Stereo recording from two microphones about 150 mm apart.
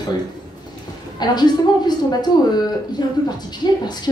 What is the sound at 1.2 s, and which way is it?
Speech, 30° left (ahead or behind).